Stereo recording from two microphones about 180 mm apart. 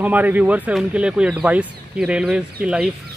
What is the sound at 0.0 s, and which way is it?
Speech, 10° right (ahead or behind).